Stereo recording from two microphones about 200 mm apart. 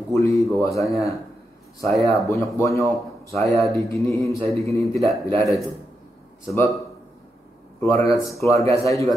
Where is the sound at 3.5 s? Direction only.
15° left (ahead or behind).